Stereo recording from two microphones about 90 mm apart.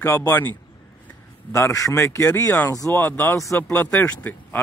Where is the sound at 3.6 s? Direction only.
20° left (ahead or behind).